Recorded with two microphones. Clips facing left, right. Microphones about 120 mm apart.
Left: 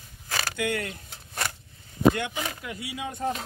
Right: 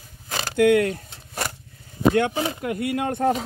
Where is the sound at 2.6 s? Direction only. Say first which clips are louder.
Right 11 dB; 55° right (ahead or behind).